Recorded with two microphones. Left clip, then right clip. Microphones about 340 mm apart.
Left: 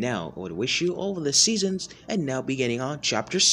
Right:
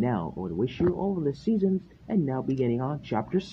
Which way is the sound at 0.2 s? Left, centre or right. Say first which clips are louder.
Even; right.